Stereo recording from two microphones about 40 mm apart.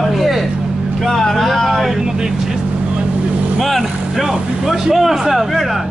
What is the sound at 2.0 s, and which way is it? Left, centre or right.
Vehicle, centre.